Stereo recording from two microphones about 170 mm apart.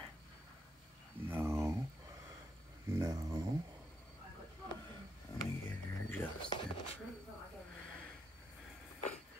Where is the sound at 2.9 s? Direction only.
20° right (ahead or behind).